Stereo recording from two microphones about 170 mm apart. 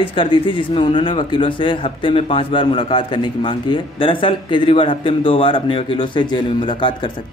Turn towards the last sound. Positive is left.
turn(degrees=30)  # may be behind; listen again after turning